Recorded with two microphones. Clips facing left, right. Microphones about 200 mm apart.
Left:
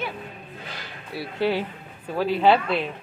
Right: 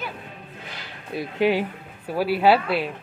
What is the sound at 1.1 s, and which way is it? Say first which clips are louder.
A woman's voice: right 3 dB; 15° right (ahead or behind).